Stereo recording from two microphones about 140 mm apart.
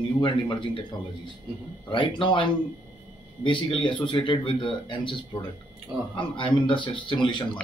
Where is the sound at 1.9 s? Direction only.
35° left (ahead or behind).